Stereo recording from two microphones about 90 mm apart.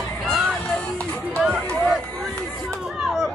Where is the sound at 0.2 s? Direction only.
Centre (ahead or behind).